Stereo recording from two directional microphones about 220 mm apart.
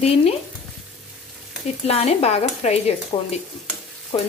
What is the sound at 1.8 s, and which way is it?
Speech, 30° left (ahead or behind).